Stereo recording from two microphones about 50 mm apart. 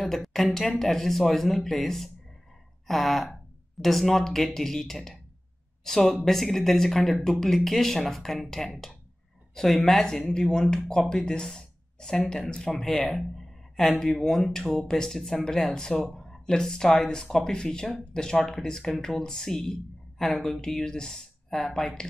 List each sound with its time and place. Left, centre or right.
0.0 s speech: centre